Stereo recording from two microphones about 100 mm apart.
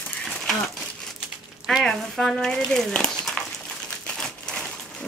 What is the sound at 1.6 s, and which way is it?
Speech, centre (ahead or behind).